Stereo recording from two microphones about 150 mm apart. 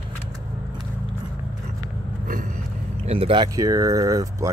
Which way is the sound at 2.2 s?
65° right (ahead or behind).